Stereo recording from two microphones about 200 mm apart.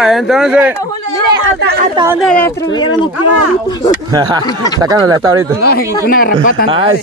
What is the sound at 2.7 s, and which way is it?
Speech, 20° left (ahead or behind).